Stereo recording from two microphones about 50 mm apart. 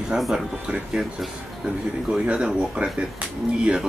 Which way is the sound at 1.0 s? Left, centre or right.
Right.